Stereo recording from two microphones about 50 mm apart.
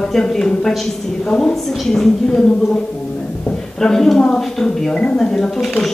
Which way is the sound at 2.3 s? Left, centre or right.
Centre.